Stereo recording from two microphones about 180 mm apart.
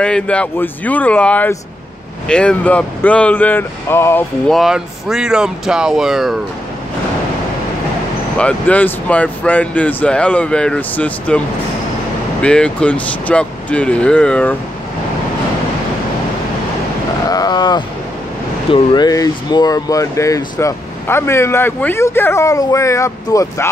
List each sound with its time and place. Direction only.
0.0 s speech: 5° left (ahead or behind)
4.5 s speech: centre (ahead or behind)
8.4 s speech: 5° left (ahead or behind)
17.3 s a sound: 20° left (ahead or behind)
18.7 s speech: 25° left (ahead or behind)